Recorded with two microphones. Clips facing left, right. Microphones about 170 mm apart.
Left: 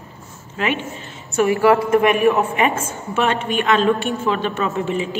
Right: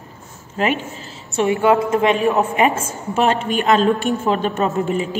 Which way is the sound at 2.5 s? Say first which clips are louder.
Right 2 dB; 35° right (ahead or behind).